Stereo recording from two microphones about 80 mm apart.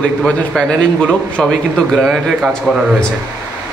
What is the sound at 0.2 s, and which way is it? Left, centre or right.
Speech, centre.